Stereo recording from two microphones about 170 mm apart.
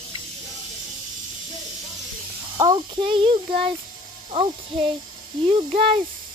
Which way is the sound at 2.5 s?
25° right (ahead or behind).